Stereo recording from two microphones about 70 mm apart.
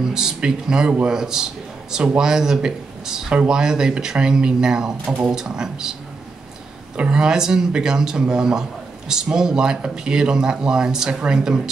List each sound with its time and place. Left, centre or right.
0.0 s speech: centre
5.0 s speech: right
5.3 s speech: centre
7.0 s speech: centre